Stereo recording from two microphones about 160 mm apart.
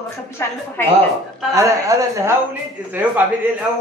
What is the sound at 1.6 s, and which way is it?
Speech, 20° right (ahead or behind).